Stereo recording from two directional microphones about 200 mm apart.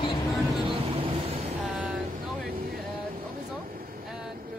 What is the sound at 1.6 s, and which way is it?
Speech, centre (ahead or behind).